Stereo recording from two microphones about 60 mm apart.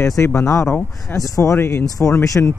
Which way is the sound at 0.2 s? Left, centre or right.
Left.